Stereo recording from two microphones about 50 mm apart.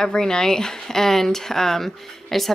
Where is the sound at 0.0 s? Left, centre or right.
Centre.